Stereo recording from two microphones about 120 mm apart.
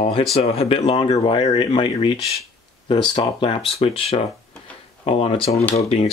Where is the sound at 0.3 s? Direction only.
60° left (ahead or behind).